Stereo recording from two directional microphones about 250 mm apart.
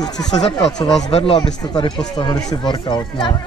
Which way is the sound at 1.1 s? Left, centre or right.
Left.